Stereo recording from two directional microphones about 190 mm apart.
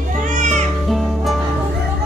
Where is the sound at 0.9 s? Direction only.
Centre (ahead or behind).